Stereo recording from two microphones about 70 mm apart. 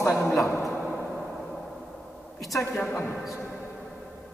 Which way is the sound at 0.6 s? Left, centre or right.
Centre.